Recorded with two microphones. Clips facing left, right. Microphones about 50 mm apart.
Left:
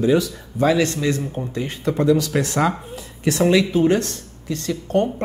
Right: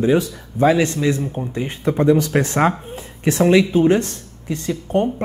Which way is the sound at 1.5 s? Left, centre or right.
Right.